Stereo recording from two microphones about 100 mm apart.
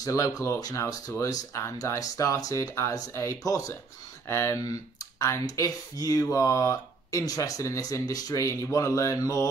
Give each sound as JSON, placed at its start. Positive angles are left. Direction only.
{"t": 0.0, "sound": "speech", "side_deg": 35}